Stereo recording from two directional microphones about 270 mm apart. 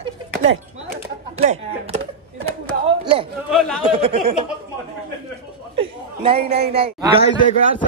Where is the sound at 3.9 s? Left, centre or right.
Right.